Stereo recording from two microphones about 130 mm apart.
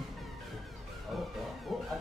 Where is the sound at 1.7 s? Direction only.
Centre (ahead or behind).